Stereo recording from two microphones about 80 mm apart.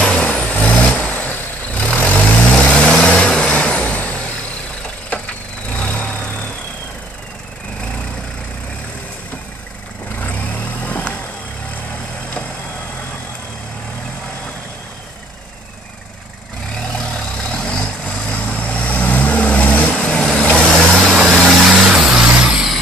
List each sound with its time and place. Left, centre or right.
0.0 s vehicle: centre
10.1 s vehicle: left
16.8 s vehicle: centre